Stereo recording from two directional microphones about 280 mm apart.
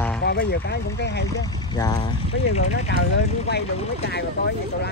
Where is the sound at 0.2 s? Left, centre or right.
Left.